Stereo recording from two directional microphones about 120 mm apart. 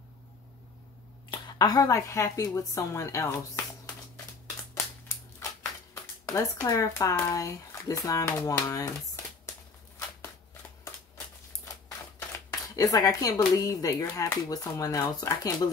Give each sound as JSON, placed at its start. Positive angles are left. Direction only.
{"t": 1.3, "sound": "speech", "side_deg": 35}
{"t": 5.0, "sound": "typewriter", "side_deg": 25}
{"t": 6.2, "sound": "speech", "side_deg": 25}
{"t": 12.3, "sound": "shuffling cards", "side_deg": 30}
{"t": 13.6, "sound": "speech", "side_deg": 30}